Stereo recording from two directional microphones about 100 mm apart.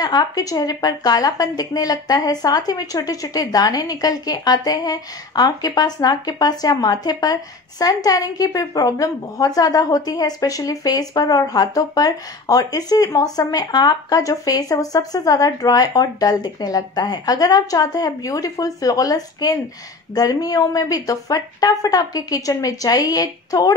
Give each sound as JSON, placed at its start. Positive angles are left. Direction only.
{"t": 0.0, "sound": "a woman's voice", "side_deg": 40}